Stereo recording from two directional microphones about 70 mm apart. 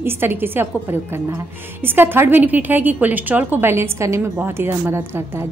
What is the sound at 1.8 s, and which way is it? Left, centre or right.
A woman's voice, right.